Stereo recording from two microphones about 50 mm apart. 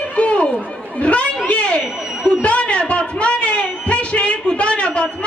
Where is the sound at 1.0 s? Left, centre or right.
Left.